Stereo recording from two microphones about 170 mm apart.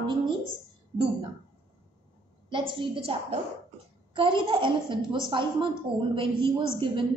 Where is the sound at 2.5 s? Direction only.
30° right (ahead or behind).